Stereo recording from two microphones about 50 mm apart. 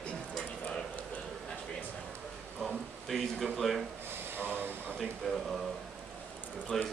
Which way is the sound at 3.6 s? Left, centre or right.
Centre.